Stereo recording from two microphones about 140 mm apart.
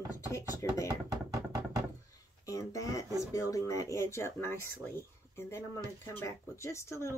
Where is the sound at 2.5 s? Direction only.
25° left (ahead or behind).